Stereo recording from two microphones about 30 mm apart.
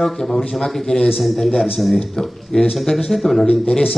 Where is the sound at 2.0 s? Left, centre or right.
Centre.